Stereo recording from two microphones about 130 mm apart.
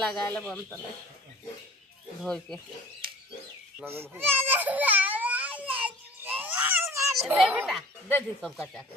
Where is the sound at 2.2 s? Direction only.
5° left (ahead or behind).